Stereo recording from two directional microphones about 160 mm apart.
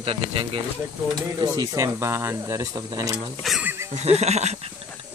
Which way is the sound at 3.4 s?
Centre (ahead or behind).